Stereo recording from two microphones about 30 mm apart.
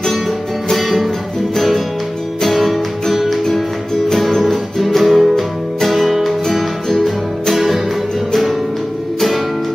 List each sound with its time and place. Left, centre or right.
0.7 s music: centre
2.4 s music: centre
4.5 s music: centre
6.9 s music: centre
7.5 s music: centre